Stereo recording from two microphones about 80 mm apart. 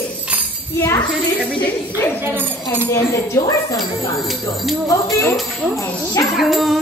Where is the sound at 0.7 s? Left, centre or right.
Left.